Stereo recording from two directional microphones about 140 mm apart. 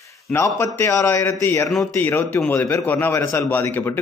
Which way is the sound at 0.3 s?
15° left (ahead or behind).